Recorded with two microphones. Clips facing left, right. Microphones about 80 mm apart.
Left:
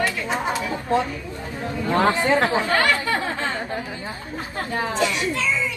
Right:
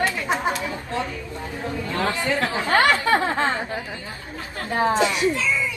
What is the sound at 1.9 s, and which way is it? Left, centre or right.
Chatter, left.